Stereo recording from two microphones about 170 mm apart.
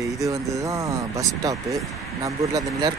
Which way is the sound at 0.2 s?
20° right (ahead or behind).